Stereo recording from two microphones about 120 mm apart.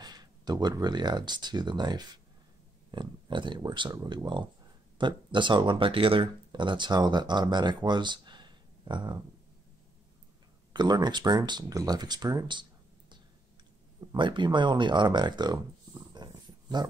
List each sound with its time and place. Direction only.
0.0 s speech: 35° right (ahead or behind)
10.7 s speech: 35° right (ahead or behind)
14.1 s speech: 40° right (ahead or behind)
16.2 s dog: 35° right (ahead or behind)